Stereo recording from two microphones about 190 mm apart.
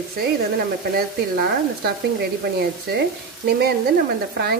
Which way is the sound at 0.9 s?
55° right (ahead or behind).